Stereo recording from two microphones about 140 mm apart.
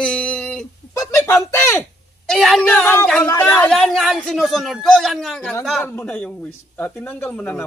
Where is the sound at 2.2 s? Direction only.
Centre (ahead or behind).